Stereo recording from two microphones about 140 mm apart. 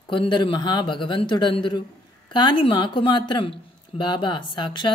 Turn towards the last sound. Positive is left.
turn(degrees=30)  # may be behind; listen again after turning